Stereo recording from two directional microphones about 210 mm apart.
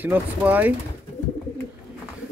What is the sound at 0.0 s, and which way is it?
Speech, 10° right (ahead or behind).